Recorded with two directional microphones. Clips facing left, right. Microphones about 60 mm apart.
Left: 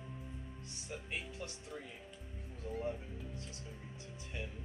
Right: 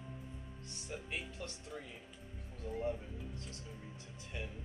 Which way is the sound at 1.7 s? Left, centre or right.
Centre.